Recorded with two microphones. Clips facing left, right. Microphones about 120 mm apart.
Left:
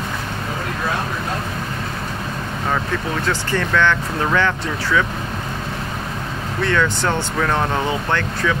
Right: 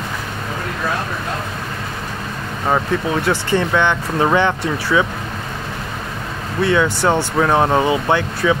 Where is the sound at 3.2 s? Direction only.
15° right (ahead or behind).